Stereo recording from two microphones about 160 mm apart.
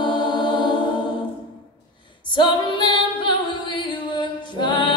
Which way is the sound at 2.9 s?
30° left (ahead or behind).